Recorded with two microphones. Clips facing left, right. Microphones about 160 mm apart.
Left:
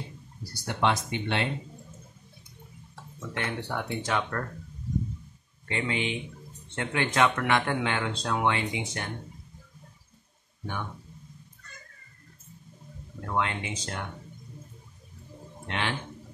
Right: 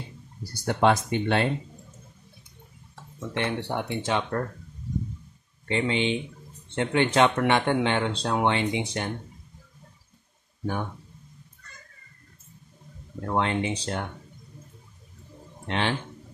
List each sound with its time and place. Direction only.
0.7 s speech: 50° right (ahead or behind)
3.2 s speech: 25° right (ahead or behind)
5.7 s speech: 30° right (ahead or behind)
13.3 s speech: 30° right (ahead or behind)
15.7 s speech: 30° right (ahead or behind)